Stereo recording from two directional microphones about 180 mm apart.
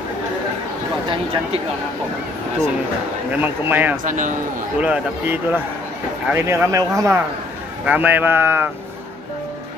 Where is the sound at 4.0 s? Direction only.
45° right (ahead or behind).